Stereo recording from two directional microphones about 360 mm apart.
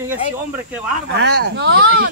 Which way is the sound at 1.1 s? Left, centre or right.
Right.